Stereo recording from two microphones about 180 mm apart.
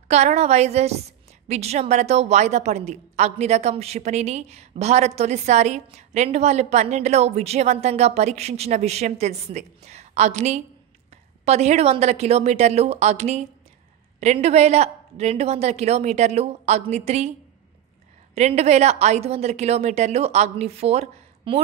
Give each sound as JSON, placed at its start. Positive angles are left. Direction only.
{"t": 0.1, "sound": "a woman's voice", "side_deg": -40}
{"t": 18.3, "sound": "a woman's voice", "side_deg": -35}